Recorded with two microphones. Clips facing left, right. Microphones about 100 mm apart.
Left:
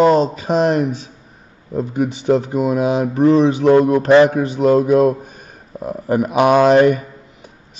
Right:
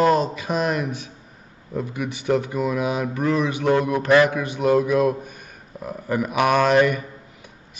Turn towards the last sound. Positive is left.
turn(degrees=30)  # may be behind; listen again after turning